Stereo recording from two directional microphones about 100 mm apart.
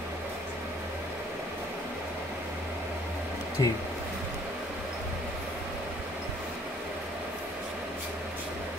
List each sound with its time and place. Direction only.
3.6 s speech: 40° left (ahead or behind)